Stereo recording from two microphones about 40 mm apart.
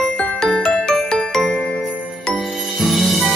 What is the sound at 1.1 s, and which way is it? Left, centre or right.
Jingle, centre.